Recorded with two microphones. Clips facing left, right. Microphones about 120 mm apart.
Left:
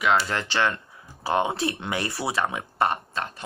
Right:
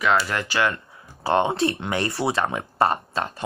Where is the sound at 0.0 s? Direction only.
20° left (ahead or behind).